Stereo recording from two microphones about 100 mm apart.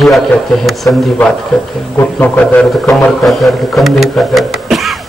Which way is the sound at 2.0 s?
15° left (ahead or behind).